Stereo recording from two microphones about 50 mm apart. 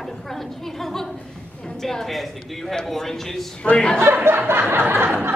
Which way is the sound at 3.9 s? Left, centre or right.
Right.